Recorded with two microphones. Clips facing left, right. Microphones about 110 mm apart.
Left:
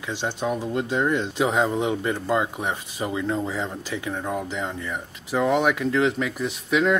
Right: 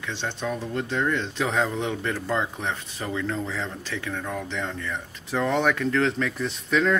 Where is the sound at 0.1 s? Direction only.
15° left (ahead or behind).